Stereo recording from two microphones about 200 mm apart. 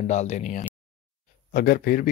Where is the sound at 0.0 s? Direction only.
35° left (ahead or behind).